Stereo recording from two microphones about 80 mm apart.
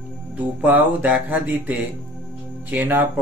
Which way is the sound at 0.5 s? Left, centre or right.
Right.